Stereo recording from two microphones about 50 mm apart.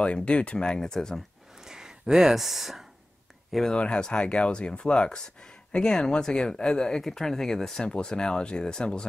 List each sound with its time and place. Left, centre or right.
0.0 s speech: left
1.6 s a sound: centre
3.7 s speech: centre